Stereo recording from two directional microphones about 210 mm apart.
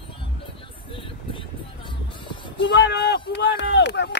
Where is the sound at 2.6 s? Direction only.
55° left (ahead or behind).